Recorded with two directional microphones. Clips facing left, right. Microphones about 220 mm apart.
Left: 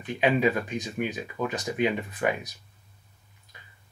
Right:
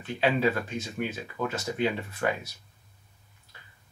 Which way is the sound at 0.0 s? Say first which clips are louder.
Left 2 dB; 15° left (ahead or behind).